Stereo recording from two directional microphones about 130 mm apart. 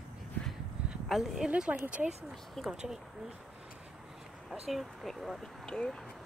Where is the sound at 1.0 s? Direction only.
Centre (ahead or behind).